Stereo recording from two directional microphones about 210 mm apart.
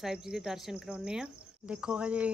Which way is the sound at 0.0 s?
Centre (ahead or behind).